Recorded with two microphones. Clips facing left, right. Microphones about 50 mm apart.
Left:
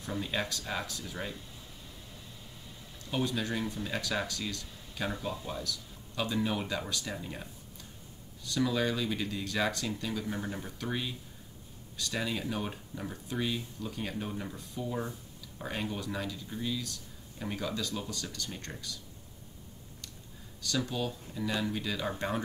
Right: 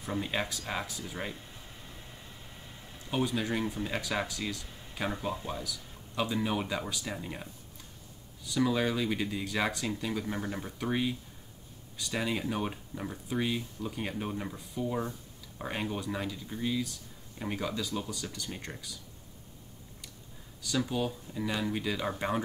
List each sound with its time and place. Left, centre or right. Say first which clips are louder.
0.0 s speech: right 1 dB; right
3.1 s speech: right 2 dB; centre
8.5 s speech: right 1 dB; centre
20.6 s speech: right 2 dB; centre